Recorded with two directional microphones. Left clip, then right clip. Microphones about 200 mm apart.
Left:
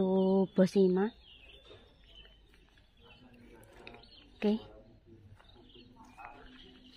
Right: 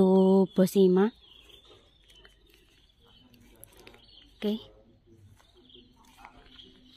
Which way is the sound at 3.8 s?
Centre (ahead or behind).